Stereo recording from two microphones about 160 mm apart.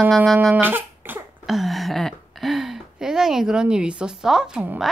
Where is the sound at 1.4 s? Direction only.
Centre (ahead or behind).